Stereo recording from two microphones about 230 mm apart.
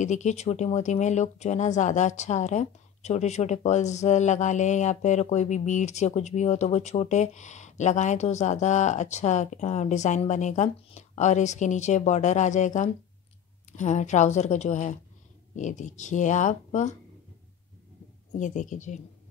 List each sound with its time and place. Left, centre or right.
0.0 s speech: left
18.3 s speech: left